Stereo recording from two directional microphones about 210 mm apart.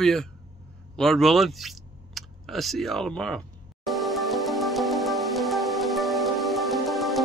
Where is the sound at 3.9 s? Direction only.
Centre (ahead or behind).